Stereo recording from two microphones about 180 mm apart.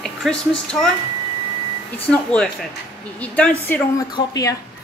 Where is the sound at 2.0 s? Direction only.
5° left (ahead or behind).